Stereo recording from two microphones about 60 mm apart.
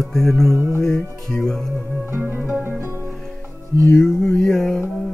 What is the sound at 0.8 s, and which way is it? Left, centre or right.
Speech, centre.